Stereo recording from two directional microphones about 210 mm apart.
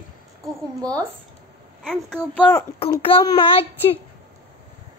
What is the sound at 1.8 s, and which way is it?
Speech, centre (ahead or behind).